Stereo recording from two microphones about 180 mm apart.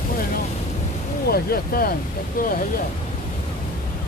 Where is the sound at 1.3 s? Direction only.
55° left (ahead or behind).